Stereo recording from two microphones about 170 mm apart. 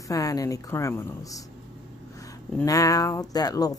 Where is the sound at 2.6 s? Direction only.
20° left (ahead or behind).